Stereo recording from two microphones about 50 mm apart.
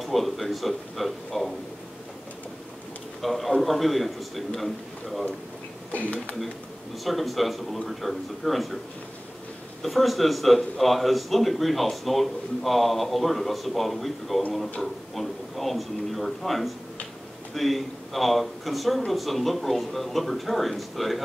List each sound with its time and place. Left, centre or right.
0.0 s a man's voice: centre
3.2 s a man's voice: centre
7.1 s a man's voice: centre
9.8 s a man's voice: centre